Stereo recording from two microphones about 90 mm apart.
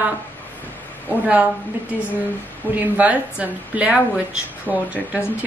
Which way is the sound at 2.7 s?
15° right (ahead or behind).